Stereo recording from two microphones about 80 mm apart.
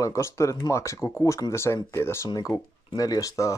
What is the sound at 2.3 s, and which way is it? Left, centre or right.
Speech, left.